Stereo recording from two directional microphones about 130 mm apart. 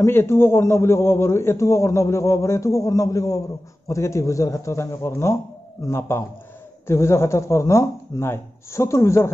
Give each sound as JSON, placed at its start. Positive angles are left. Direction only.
{"t": 0.0, "sound": "a man's voice", "side_deg": 20}